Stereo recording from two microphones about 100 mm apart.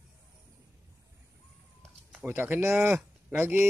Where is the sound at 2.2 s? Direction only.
20° right (ahead or behind).